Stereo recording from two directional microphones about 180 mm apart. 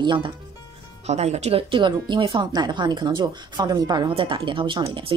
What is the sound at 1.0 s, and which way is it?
Speech, 35° right (ahead or behind).